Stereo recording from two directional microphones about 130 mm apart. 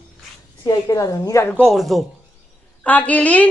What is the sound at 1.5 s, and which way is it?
Speech, 5° left (ahead or behind).